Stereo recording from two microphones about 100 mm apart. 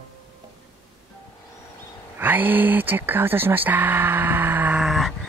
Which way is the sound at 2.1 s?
20° right (ahead or behind).